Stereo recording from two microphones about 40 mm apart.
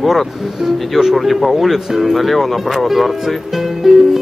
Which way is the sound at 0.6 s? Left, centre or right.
Centre.